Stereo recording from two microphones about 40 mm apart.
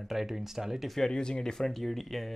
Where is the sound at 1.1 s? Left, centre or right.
Centre.